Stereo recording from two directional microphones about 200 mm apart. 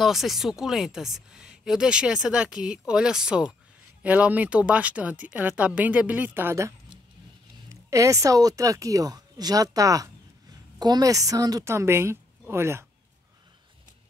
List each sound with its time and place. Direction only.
0.0 s speech: centre (ahead or behind)
7.9 s speech: 15° right (ahead or behind)